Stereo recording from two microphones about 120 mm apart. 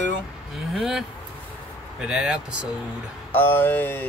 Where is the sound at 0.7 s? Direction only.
5° right (ahead or behind).